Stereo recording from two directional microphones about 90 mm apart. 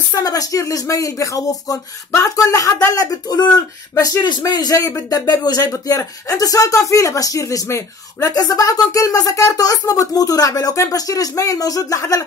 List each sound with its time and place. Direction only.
0.1 s speech: 45° left (ahead or behind)
3.9 s speech: 35° left (ahead or behind)
4.5 s speech: 45° left (ahead or behind)
5.7 s speech: 40° left (ahead or behind)